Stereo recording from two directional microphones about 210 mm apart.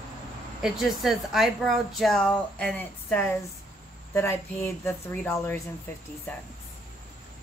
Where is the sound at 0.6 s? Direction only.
Centre (ahead or behind).